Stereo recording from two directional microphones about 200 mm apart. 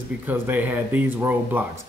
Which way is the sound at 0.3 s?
10° right (ahead or behind).